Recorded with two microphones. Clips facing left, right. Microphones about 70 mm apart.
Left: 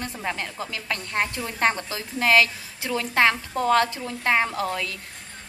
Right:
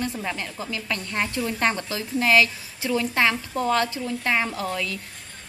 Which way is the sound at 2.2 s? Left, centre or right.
Left.